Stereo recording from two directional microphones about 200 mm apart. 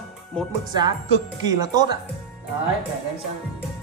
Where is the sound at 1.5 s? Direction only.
20° right (ahead or behind).